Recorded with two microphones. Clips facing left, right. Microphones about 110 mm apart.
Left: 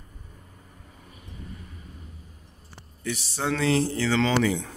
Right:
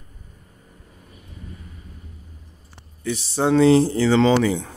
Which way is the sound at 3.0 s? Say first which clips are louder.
Right 8 dB; 30° right (ahead or behind).